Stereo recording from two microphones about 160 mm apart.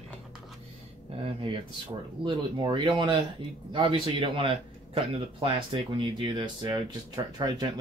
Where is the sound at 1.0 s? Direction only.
40° right (ahead or behind).